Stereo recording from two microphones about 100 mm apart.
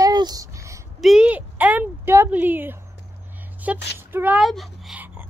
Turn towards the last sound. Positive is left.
turn(degrees=-15)  # may be behind; listen again after turning